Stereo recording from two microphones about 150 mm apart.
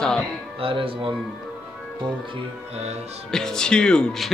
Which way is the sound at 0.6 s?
35° right (ahead or behind).